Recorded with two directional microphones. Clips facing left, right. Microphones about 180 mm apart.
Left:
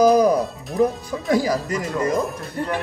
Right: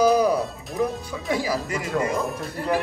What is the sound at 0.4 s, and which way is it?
Music, centre (ahead or behind).